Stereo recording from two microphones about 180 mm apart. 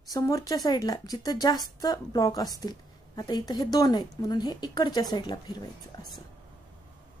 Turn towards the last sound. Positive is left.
turn(degrees=25)  # may be behind; listen again after turning